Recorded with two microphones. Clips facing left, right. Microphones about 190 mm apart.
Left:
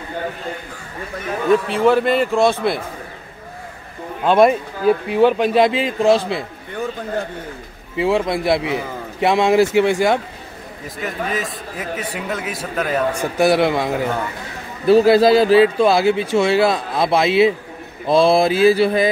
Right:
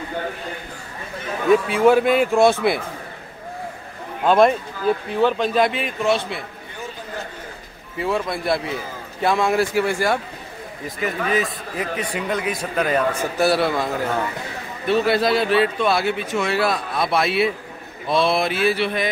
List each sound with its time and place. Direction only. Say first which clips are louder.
1.5 s a man's voice: even; 5° right (ahead or behind)
4.2 s speech: left 2 dB; centre (ahead or behind)
5.7 s a man's voice: left 6 dB; 90° left
8.0 s a man's voice: left 5 dB; 25° left (ahead or behind)
11.0 s a man's voice: right 2 dB; centre (ahead or behind)
13.2 s speech: left 3 dB; 15° left (ahead or behind)
14.9 s a man's voice: left 7 dB; 35° left (ahead or behind)